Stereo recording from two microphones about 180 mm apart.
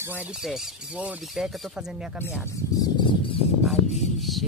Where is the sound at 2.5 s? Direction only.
20° left (ahead or behind).